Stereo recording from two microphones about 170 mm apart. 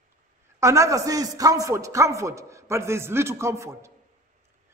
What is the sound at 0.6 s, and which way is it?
A man's voice, 15° right (ahead or behind).